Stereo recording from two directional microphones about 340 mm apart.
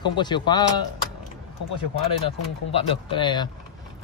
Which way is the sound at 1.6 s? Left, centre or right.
Left.